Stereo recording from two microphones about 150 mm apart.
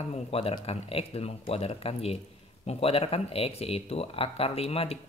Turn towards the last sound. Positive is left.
turn(degrees=40)  # may be behind; listen again after turning